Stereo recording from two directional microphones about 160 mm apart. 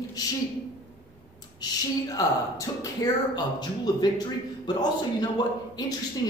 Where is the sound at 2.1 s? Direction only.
20° left (ahead or behind).